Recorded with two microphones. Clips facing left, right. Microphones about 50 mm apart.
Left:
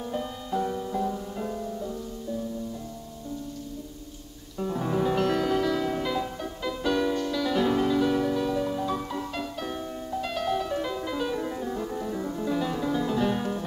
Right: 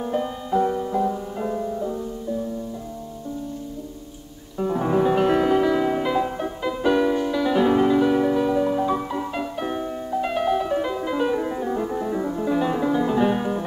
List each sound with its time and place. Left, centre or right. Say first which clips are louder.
0.0 s music: right 7 dB; right
4.6 s music: right 6 dB; right